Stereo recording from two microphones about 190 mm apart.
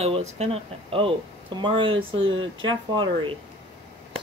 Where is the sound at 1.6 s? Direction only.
25° right (ahead or behind).